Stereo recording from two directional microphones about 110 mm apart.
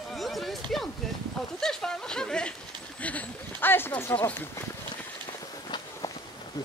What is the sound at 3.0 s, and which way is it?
Speech, 15° left (ahead or behind).